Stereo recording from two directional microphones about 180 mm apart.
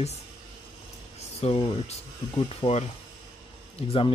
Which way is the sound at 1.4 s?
30° left (ahead or behind).